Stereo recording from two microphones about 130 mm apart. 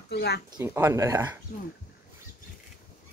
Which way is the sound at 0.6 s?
20° right (ahead or behind).